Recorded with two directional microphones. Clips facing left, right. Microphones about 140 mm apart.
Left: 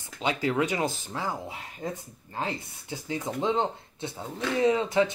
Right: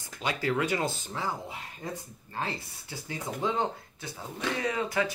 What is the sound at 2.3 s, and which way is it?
Speech, 20° left (ahead or behind).